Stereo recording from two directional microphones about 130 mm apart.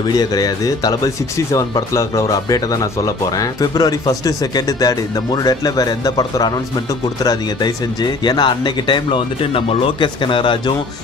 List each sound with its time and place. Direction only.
0.1 s speech: 30° left (ahead or behind)